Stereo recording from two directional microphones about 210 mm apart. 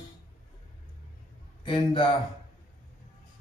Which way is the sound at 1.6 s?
20° left (ahead or behind).